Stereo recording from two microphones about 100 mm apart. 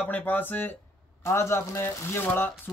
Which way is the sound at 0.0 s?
15° left (ahead or behind).